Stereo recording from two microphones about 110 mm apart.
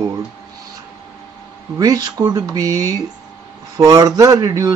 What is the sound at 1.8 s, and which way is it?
Speech, 35° right (ahead or behind).